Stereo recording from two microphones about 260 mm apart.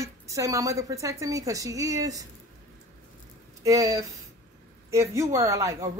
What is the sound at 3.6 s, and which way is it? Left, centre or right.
A woman's voice, centre.